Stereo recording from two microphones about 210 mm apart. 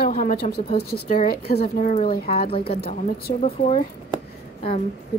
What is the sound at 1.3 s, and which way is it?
Speech, 45° left (ahead or behind).